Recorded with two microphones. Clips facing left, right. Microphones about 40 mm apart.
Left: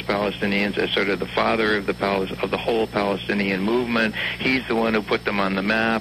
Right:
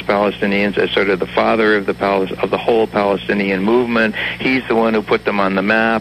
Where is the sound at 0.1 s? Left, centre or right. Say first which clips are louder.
Right 7 dB; right.